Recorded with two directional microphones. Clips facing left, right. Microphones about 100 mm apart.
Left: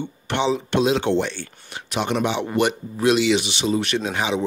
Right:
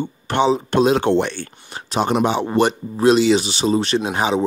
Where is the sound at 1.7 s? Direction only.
35° right (ahead or behind).